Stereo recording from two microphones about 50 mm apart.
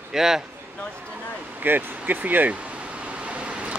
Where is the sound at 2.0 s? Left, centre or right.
Right.